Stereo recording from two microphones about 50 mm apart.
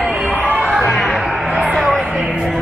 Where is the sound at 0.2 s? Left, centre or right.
Right.